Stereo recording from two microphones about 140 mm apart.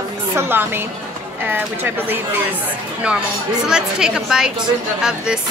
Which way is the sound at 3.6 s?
5° right (ahead or behind).